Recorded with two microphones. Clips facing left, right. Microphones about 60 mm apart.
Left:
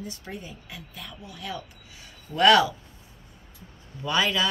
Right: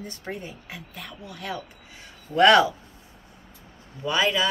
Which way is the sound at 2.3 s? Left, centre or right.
Right.